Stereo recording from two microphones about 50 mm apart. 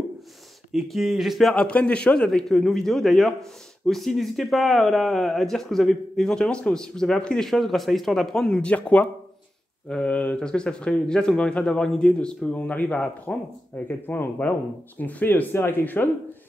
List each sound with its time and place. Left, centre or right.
0.7 s speech: centre
1.5 s a man's voice: left
2.2 s speech: centre
7.4 s a man's voice: centre; by 14.6 s left
15.0 s speech: left